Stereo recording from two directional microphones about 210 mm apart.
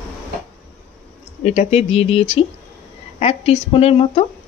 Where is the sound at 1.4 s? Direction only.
30° left (ahead or behind).